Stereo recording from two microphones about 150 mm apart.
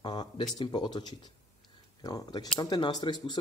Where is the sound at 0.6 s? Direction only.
30° left (ahead or behind).